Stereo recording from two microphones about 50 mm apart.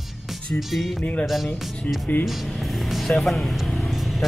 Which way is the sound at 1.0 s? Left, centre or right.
Left.